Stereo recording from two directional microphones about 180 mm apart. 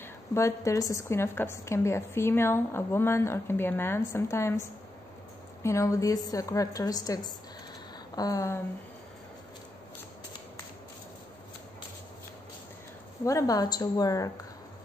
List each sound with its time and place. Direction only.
0.0 s a woman's voice: 15° left (ahead or behind)
13.2 s a woman's voice: 15° left (ahead or behind)